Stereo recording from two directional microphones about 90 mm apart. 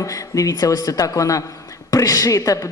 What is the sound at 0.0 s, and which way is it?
Speech, 35° left (ahead or behind).